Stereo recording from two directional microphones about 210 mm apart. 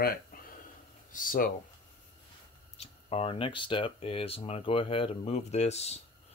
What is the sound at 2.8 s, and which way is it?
Speech, 30° left (ahead or behind).